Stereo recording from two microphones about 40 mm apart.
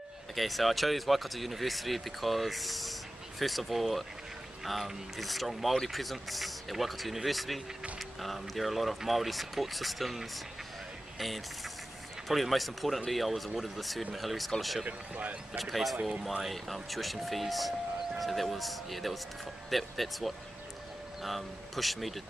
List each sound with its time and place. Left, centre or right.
0.4 s speech: centre
14.9 s speech: right
15.5 s speech: centre
16.0 s speech: right
16.4 s speech: centre